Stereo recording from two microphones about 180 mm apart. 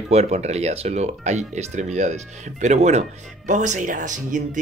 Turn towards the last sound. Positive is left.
turn(degrees=-45)  # may be behind; listen again after turning